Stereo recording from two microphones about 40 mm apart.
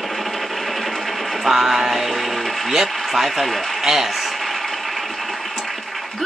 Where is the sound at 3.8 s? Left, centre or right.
Centre.